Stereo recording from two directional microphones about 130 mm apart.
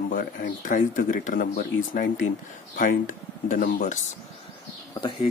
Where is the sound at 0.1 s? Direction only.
90° left.